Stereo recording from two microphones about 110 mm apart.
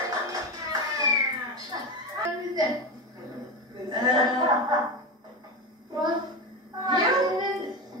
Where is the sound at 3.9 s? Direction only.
35° right (ahead or behind).